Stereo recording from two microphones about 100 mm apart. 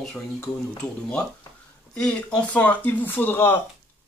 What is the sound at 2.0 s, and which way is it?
Speech, 10° left (ahead or behind).